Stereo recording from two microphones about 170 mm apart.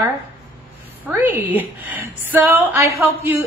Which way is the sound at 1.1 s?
10° right (ahead or behind).